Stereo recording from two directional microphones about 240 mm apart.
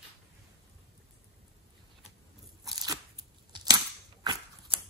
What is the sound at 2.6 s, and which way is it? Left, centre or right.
Crunch, centre.